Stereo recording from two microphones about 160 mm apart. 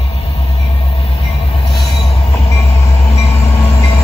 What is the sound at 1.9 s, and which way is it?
Train, 35° left (ahead or behind).